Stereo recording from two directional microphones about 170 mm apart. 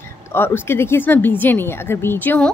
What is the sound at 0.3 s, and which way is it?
A woman's voice, 15° left (ahead or behind).